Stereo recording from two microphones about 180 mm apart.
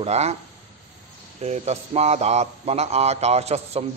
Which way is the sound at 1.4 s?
40° right (ahead or behind).